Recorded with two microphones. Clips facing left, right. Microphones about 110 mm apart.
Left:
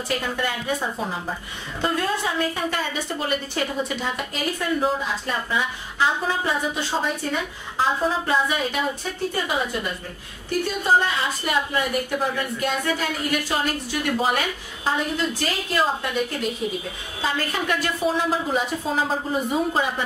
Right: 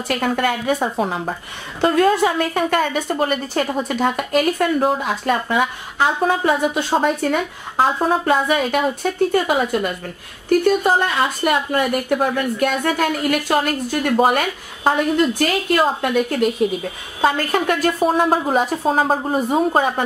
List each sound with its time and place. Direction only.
0.2 s a woman's voice: 65° right (ahead or behind)
10.6 s a woman's voice: 55° right (ahead or behind)